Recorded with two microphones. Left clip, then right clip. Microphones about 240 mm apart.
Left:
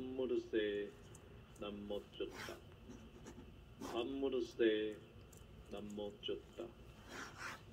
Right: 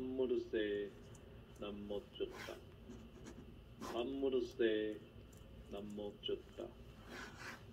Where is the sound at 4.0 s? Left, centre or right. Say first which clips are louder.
Right 2 dB; left.